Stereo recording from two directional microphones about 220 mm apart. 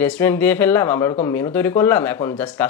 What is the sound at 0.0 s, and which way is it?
Speech, 5° left (ahead or behind).